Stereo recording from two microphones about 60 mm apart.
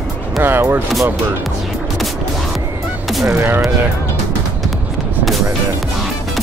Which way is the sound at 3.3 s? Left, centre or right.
Right.